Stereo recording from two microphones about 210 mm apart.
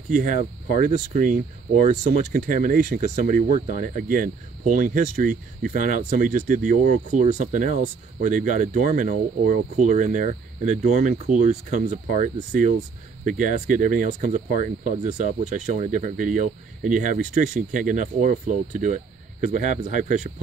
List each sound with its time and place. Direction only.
0.1 s speech: 40° right (ahead or behind)